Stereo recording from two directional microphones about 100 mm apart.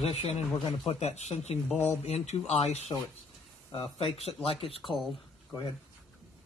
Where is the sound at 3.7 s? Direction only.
70° left (ahead or behind).